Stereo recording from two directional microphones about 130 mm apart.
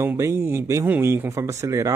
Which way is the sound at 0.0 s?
20° right (ahead or behind).